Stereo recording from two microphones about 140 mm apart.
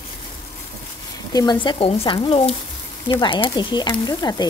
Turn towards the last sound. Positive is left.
turn(degrees=30)  # may be behind; listen again after turning